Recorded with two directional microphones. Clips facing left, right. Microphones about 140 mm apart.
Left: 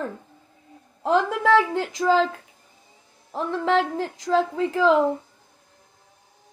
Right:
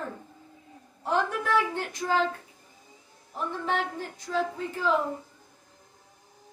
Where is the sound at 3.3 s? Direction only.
90° left.